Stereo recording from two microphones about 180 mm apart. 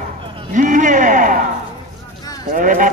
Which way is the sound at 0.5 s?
45° right (ahead or behind).